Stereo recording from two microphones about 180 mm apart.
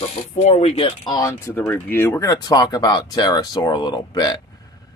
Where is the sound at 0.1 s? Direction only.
35° left (ahead or behind).